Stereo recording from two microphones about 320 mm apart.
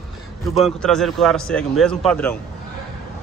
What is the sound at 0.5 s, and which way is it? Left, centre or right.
A man's voice, centre.